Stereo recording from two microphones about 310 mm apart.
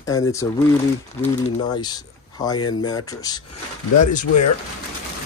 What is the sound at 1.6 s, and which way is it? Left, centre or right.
Speech, centre.